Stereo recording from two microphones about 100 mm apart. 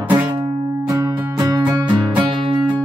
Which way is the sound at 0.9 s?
30° right (ahead or behind).